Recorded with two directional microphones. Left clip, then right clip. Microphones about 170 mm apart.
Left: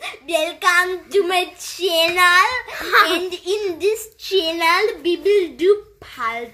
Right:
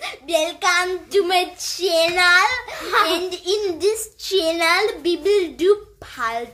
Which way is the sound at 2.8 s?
20° left (ahead or behind).